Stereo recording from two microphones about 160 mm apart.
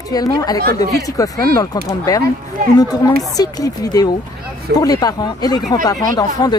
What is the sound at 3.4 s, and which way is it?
Speech, 25° left (ahead or behind).